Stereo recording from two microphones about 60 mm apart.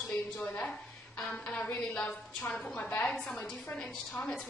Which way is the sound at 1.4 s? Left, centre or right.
Centre.